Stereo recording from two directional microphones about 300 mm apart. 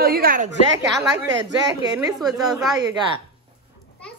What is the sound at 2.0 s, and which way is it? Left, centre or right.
Speech, centre.